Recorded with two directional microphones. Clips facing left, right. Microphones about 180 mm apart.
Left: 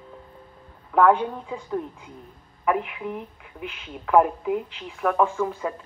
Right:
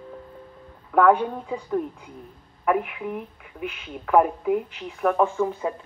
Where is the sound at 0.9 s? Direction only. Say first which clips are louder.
Right 1 dB; 55° right (ahead or behind).